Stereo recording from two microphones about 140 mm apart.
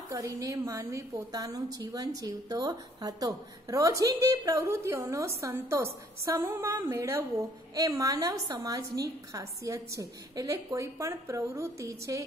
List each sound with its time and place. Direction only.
0.1 s a woman's voice: 25° right (ahead or behind)